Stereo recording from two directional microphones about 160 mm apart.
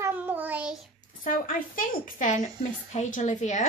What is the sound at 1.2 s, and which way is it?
A woman's voice, 55° left (ahead or behind).